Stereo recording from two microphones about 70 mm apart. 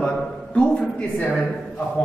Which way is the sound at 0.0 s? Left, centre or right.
Centre.